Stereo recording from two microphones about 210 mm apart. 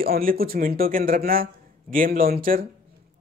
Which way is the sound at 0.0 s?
45° right (ahead or behind).